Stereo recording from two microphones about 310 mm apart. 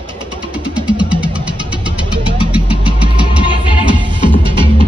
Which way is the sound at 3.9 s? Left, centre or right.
Centre.